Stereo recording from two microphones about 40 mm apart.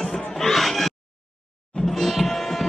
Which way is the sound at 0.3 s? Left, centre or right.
Centre.